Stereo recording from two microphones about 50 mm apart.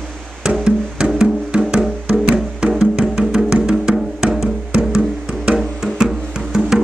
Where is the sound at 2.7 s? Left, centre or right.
Centre.